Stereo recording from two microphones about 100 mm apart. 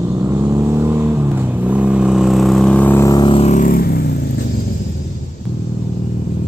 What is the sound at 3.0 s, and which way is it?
Vehicle, 35° left (ahead or behind).